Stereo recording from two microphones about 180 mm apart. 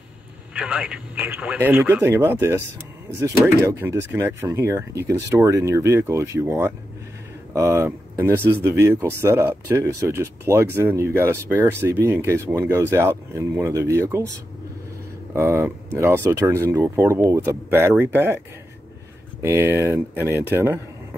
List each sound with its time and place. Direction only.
0.6 s speech: 5° right (ahead or behind)
15.3 s speech: 15° right (ahead or behind)
19.4 s speech: 15° right (ahead or behind)